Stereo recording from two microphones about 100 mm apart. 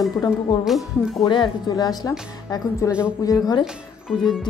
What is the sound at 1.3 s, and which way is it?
Speech, 50° left (ahead or behind).